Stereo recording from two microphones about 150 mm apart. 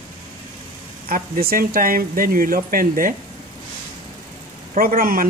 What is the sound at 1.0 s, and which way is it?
Speech, 70° right (ahead or behind).